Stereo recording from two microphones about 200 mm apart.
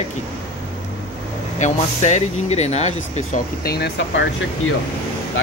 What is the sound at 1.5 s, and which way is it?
Speech, 35° left (ahead or behind).